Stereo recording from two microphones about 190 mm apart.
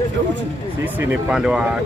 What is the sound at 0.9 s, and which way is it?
Speech, 5° right (ahead or behind).